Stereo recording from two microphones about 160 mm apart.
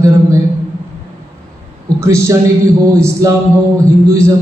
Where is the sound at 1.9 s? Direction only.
15° right (ahead or behind).